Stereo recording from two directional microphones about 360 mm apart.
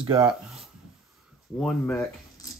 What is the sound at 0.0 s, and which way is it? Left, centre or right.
Speech, centre.